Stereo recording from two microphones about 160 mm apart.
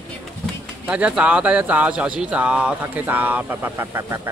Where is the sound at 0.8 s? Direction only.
10° right (ahead or behind).